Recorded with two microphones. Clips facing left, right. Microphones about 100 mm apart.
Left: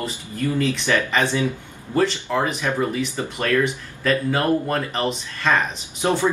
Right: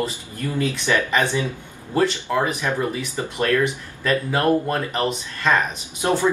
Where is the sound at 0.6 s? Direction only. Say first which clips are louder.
Right 1 dB; 15° right (ahead or behind).